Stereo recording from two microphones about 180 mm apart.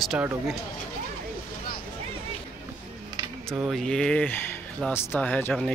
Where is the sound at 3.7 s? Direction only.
5° left (ahead or behind).